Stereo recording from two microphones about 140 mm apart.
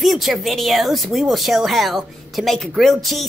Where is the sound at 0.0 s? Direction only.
Centre (ahead or behind).